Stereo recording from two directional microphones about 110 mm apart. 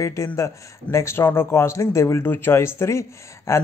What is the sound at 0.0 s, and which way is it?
Speech, 25° left (ahead or behind).